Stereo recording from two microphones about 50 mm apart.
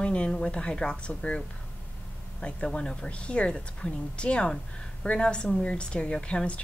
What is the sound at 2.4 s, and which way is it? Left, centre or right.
A woman's voice, centre.